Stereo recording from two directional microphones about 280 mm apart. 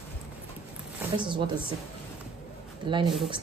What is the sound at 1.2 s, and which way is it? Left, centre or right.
Speech, centre.